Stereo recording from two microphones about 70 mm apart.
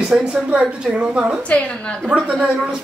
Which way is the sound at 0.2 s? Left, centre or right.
Centre.